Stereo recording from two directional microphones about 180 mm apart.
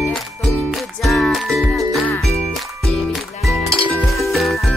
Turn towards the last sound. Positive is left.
turn(degrees=0)  # may be behind; listen again after turning